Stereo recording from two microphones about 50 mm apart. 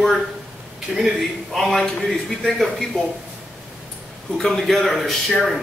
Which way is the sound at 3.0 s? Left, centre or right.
Centre.